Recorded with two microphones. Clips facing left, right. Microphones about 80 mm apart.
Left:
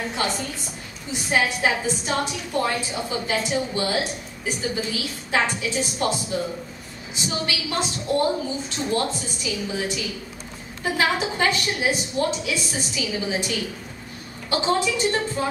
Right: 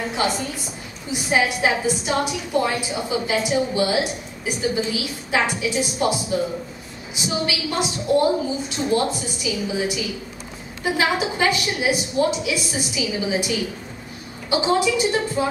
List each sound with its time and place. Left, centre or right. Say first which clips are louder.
0.0 s a woman's voice: right 3 dB; centre
5.3 s a woman's voice: right 2 dB; centre